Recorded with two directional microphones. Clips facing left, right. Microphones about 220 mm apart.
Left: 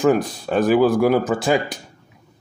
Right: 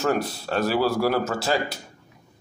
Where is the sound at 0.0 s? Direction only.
15° left (ahead or behind).